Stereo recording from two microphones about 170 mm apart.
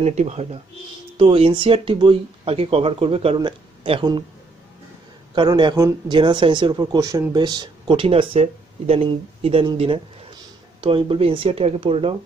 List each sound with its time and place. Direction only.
0.0 s speech: 40° right (ahead or behind)
5.3 s speech: 25° right (ahead or behind)